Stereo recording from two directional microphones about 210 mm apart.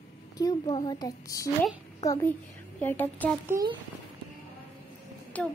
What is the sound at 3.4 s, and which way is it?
Speech, 15° right (ahead or behind).